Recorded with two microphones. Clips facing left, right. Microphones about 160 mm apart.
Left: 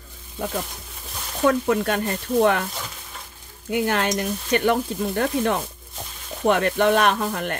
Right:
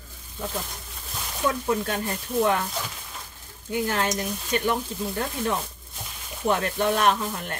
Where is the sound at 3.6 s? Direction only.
65° left (ahead or behind).